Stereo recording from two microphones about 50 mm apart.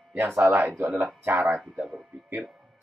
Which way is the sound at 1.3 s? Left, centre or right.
Right.